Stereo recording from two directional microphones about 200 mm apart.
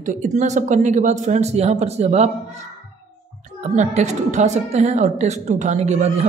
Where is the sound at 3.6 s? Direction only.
35° right (ahead or behind).